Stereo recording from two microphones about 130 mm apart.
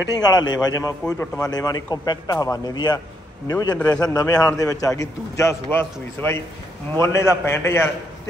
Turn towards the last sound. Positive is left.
turn(degrees=20)  # may be behind; listen again after turning